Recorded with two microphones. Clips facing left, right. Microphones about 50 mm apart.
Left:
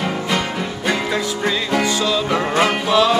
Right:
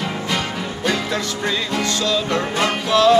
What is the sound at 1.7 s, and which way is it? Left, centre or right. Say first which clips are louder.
Music: left 3 dB; centre.